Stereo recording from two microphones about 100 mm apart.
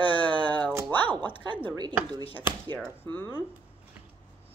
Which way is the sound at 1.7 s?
45° right (ahead or behind).